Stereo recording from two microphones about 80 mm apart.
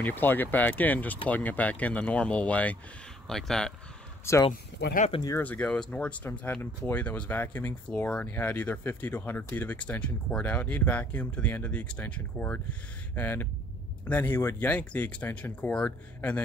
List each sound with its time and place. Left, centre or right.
0.0 s speech: left
3.3 s speech: centre
4.3 s speech: left
5.4 s speech: centre
14.7 s a man's voice: centre